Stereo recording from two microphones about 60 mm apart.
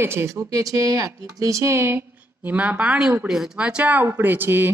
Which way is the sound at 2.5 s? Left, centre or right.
Right.